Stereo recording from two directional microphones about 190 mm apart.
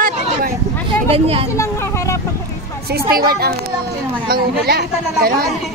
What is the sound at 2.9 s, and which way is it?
Speech, 55° right (ahead or behind).